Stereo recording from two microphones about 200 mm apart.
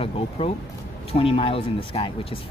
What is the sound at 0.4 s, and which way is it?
Speech, 25° left (ahead or behind).